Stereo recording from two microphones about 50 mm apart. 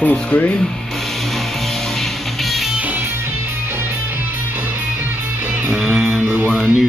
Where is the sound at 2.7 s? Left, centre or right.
Right.